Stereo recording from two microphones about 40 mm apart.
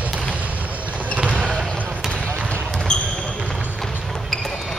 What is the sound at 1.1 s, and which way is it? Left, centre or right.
Basketball bounce, right.